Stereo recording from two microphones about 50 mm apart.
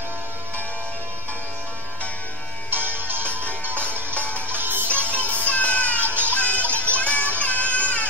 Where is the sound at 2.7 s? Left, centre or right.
Right.